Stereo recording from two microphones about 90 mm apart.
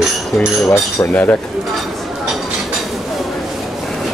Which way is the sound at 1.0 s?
20° left (ahead or behind).